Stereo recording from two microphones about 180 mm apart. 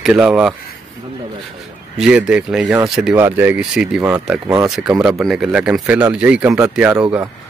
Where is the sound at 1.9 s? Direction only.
5° right (ahead or behind).